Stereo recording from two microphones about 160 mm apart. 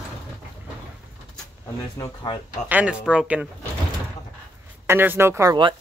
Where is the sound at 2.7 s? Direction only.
5° right (ahead or behind).